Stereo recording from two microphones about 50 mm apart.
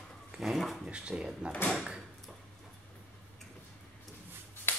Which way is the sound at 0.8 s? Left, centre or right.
Right.